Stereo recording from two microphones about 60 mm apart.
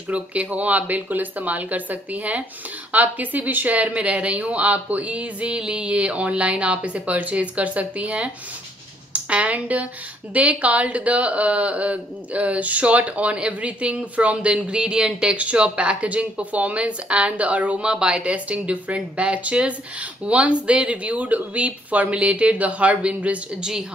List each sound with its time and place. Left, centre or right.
0.1 s a woman's voice: right